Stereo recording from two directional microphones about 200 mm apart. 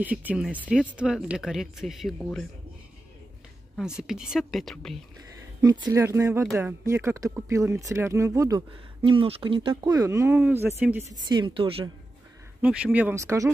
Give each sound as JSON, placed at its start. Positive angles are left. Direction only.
{"t": 0.0, "sound": "speech", "side_deg": -10}
{"t": 4.1, "sound": "speech", "side_deg": 0}
{"t": 5.6, "sound": "speech", "side_deg": -20}
{"t": 11.2, "sound": "speech", "side_deg": -25}
{"t": 12.6, "sound": "speech", "side_deg": -5}